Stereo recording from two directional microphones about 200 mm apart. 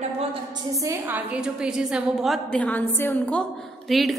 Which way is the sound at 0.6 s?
15° right (ahead or behind).